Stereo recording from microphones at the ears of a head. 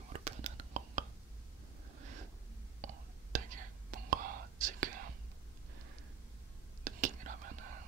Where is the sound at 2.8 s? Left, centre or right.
Right.